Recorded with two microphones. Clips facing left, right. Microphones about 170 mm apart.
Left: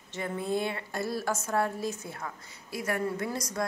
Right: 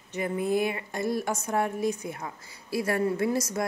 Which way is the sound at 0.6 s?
15° right (ahead or behind).